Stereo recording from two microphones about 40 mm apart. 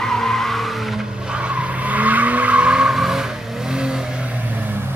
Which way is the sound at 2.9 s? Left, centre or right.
Centre.